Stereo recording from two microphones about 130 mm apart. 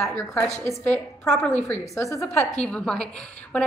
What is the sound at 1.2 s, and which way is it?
Speech, centre (ahead or behind).